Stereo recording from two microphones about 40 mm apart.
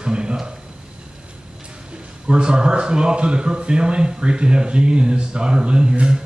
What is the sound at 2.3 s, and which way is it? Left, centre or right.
Speech, right.